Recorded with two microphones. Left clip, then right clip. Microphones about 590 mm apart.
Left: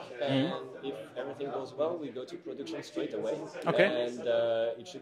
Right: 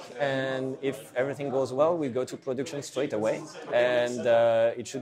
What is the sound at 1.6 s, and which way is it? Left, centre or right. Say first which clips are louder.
Speech: right 10 dB; right.